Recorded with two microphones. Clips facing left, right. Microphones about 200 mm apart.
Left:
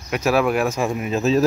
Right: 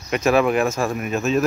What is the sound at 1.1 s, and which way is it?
Speech, 35° left (ahead or behind).